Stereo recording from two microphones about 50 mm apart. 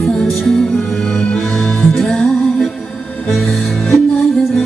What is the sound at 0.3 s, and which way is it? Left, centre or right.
Music, centre.